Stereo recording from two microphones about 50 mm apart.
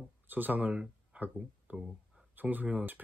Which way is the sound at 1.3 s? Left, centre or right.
Right.